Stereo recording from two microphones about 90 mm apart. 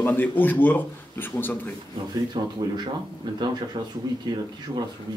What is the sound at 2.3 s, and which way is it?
Speech, 55° right (ahead or behind).